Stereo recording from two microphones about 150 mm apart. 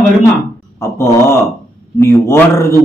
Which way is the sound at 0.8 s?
20° left (ahead or behind).